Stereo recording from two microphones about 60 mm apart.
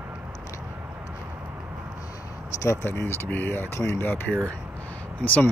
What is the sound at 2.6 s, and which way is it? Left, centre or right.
Speech, left.